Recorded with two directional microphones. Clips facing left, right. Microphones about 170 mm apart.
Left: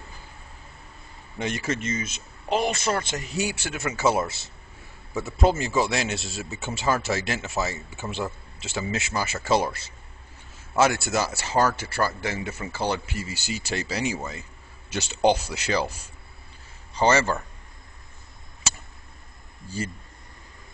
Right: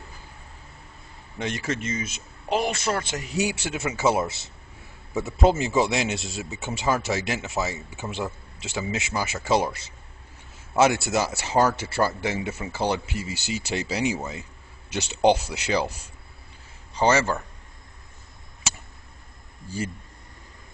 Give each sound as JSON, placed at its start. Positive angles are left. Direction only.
{"t": 1.4, "sound": "a man's voice", "side_deg": 5}
{"t": 16.9, "sound": "a man's voice", "side_deg": -10}